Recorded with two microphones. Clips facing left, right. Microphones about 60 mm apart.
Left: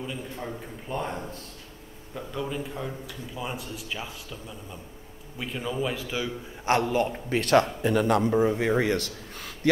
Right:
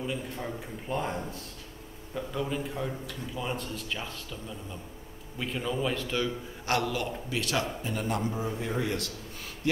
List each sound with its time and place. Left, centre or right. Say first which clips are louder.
0.0 s a man's voice: right 1 dB; centre
6.6 s a man's voice: left 6 dB; left
7.8 s a man's voice: left 8 dB; left